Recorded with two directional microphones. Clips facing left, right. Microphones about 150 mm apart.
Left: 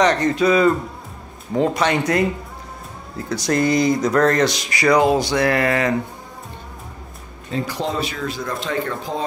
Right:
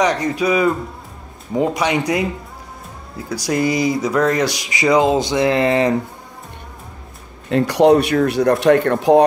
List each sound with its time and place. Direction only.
0.0 s speech: 10° right (ahead or behind); by 5.9 s 25° right (ahead or behind)
7.4 s speech: 70° right (ahead or behind)